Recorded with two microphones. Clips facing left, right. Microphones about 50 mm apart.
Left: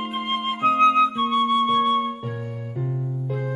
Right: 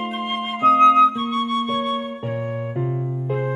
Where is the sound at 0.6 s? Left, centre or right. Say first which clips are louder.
Right 5 dB; right.